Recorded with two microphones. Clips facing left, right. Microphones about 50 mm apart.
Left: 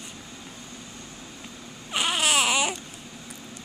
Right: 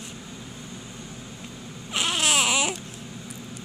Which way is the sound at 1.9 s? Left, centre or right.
Centre.